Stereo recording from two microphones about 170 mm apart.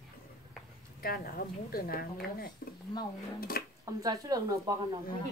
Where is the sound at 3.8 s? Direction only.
20° right (ahead or behind).